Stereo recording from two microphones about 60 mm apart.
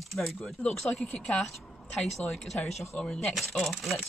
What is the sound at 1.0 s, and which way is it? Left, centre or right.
Speech, centre.